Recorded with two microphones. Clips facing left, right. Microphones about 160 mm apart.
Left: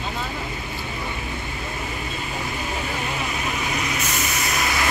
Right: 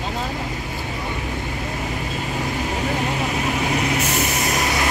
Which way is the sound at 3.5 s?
65° right (ahead or behind).